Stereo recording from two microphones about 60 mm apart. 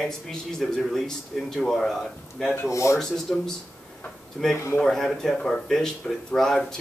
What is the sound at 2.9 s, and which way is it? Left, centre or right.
A man's voice, centre.